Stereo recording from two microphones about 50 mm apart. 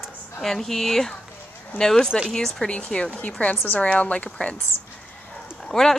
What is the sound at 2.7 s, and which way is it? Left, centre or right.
A woman's voice, centre.